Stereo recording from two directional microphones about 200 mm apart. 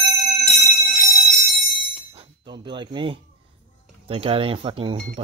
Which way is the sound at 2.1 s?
20° right (ahead or behind).